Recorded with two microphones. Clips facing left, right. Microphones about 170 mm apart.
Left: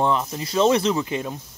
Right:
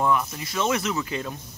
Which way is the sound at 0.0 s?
30° left (ahead or behind).